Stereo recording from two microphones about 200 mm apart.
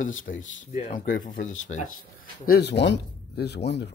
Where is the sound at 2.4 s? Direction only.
55° left (ahead or behind).